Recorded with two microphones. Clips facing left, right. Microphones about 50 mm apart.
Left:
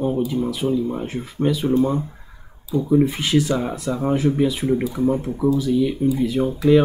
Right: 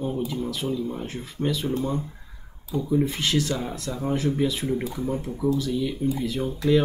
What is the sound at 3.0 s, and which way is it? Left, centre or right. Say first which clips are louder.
Speech: left 5 dB; centre.